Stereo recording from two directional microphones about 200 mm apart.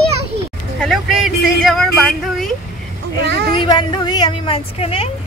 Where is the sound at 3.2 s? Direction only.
55° right (ahead or behind).